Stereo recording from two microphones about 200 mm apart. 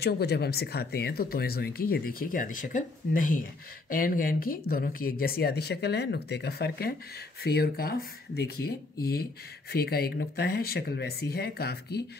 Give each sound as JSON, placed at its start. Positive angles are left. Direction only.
{"t": 0.0, "sound": "speech", "side_deg": 55}